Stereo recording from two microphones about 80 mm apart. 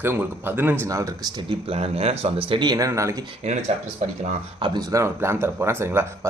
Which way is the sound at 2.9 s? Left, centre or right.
Right.